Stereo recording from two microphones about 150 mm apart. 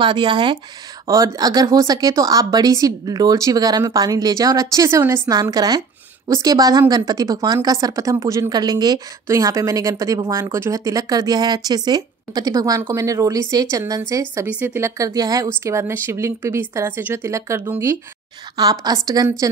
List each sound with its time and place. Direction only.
0.0 s a woman's voice: 30° right (ahead or behind)